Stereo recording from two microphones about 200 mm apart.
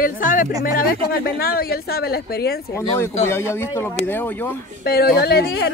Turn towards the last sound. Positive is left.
turn(degrees=50)  # may be behind; listen again after turning